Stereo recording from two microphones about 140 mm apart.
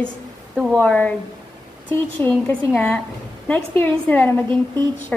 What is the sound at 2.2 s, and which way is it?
A woman's voice, 15° left (ahead or behind).